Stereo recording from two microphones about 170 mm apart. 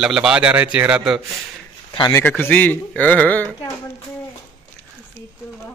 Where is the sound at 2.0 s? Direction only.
20° left (ahead or behind).